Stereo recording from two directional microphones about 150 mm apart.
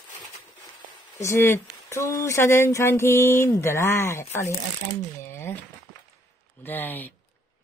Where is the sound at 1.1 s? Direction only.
15° left (ahead or behind).